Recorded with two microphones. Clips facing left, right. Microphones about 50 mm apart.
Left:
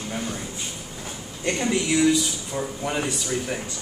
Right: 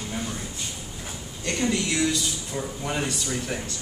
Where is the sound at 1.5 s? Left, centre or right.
Centre.